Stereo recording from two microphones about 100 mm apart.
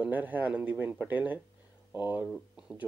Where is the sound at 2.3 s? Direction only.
10° right (ahead or behind).